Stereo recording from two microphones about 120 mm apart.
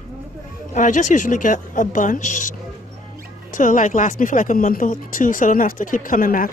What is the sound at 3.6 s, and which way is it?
Speech, 90° left.